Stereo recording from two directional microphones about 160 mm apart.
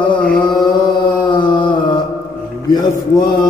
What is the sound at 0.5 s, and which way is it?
Chant, 25° left (ahead or behind).